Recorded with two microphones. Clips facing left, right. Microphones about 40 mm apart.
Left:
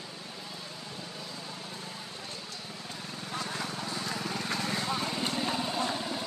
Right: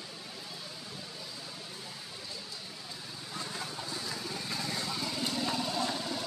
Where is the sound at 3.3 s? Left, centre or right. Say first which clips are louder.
Left 4 dB; left.